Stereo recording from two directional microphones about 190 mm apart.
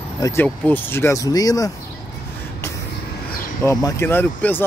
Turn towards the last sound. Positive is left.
turn(degrees=10)  # may be behind; listen again after turning